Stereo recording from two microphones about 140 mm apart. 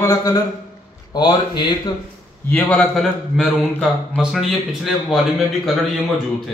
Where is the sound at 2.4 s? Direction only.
15° left (ahead or behind).